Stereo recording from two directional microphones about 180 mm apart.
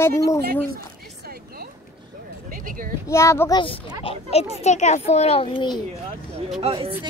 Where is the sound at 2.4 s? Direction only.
50° right (ahead or behind).